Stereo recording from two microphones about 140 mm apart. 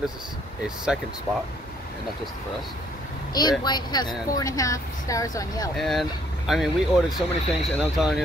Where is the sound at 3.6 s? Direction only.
30° left (ahead or behind).